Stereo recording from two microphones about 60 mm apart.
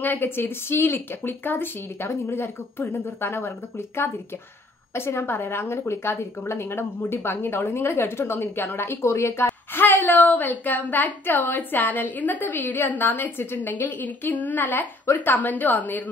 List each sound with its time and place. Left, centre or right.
0.0 s speech: left
0.4 s a woman's voice: left
10.1 s a woman's voice: left